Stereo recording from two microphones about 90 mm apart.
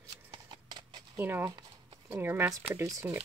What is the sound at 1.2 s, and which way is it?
Speech, 25° right (ahead or behind).